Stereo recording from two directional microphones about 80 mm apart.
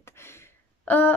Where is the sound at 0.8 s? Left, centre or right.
Left.